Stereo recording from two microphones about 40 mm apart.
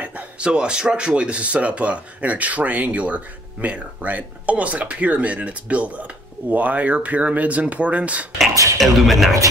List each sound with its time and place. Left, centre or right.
0.4 s speech: right
8.4 s speech: centre